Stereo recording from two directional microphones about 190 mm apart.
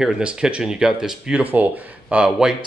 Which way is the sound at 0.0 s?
5° right (ahead or behind).